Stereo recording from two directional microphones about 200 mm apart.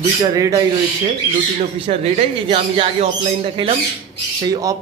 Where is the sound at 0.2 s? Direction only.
15° right (ahead or behind).